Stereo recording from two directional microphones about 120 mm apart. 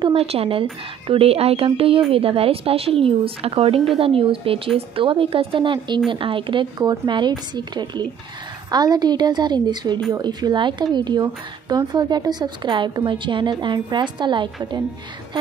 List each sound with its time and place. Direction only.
0.1 s a woman's voice: 55° right (ahead or behind); by 14.8 s 40° right (ahead or behind)